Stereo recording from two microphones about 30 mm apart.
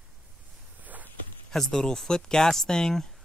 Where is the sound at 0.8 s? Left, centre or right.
Right.